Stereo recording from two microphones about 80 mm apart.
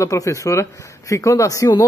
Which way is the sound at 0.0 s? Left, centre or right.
Left.